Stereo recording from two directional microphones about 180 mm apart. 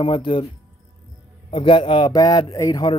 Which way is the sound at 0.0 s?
30° left (ahead or behind).